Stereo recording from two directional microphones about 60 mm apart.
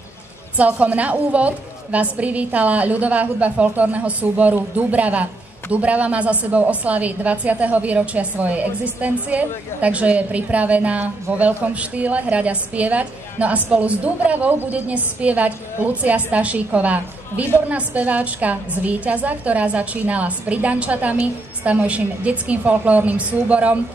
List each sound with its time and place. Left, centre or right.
0.6 s a woman's voice: right